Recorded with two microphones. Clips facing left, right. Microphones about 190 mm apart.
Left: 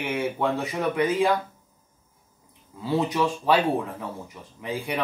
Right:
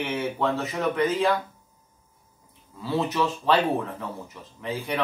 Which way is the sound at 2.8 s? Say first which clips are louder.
Left 1 dB; 15° left (ahead or behind).